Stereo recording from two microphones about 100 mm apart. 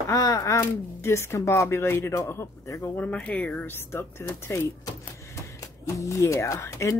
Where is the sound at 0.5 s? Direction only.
25° left (ahead or behind).